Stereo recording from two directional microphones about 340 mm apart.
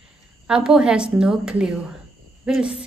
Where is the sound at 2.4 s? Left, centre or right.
Centre.